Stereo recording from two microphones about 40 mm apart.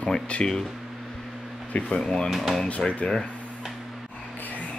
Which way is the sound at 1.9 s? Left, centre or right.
Centre.